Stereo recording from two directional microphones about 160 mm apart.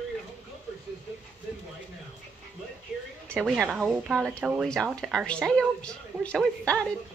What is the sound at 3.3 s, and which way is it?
A woman's voice, 5° right (ahead or behind).